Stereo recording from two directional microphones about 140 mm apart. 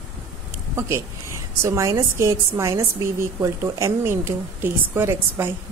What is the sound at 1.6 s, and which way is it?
A woman's voice, 20° right (ahead or behind).